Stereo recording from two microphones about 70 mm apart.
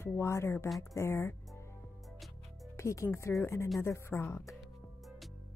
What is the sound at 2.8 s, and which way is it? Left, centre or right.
A woman's voice, left.